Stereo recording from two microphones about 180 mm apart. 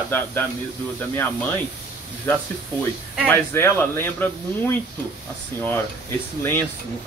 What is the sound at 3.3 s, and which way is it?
Speech, 15° left (ahead or behind).